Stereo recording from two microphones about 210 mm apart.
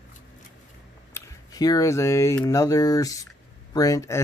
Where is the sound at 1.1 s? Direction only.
20° left (ahead or behind).